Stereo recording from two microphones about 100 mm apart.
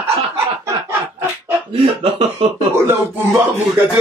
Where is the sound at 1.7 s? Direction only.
85° right.